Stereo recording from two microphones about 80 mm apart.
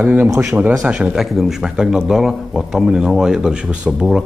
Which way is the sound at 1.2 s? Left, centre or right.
Centre.